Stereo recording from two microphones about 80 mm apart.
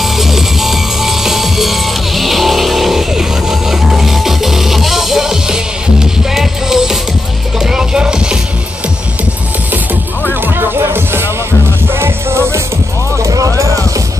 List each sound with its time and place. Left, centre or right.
0.0 s music: centre
10.4 s music: right
13.2 s music: right